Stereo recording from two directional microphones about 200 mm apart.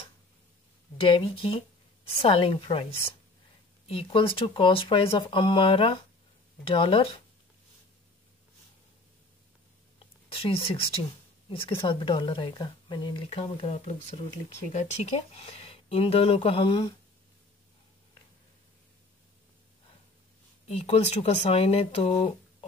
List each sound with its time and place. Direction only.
1.0 s speech: 25° left (ahead or behind)
9.9 s speech: 30° left (ahead or behind)
20.6 s speech: 30° left (ahead or behind)